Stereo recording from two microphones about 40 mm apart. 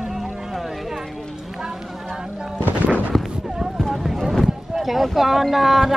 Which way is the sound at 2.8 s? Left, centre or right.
Right.